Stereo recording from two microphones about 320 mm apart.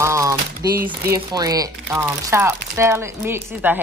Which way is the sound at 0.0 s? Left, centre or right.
Centre.